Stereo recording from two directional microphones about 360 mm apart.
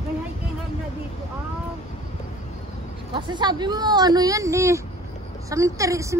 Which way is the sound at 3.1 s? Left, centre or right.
Centre.